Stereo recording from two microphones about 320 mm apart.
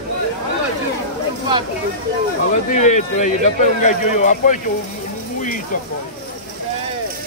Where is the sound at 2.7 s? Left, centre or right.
Left.